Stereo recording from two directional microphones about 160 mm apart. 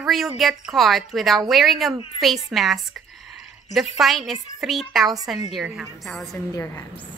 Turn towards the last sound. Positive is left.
turn(degrees=15)  # may be behind; listen again after turning